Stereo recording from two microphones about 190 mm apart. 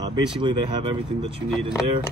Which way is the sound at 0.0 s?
25° right (ahead or behind).